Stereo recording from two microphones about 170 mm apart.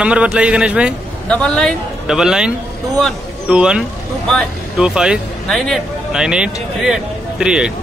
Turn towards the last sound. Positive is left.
turn(degrees=-5)  # may be behind; listen again after turning